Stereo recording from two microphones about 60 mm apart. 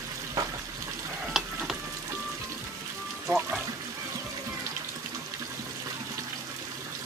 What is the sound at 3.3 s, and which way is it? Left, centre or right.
Music, right.